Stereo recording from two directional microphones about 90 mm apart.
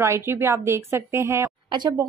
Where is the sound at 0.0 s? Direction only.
30° right (ahead or behind).